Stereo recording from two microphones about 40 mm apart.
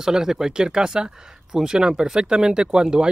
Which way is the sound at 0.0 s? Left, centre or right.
Centre.